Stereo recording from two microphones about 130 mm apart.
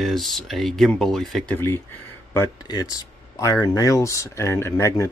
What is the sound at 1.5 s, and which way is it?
Speech, 20° left (ahead or behind).